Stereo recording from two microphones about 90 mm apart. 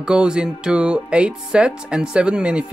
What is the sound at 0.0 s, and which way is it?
Speech, 10° right (ahead or behind).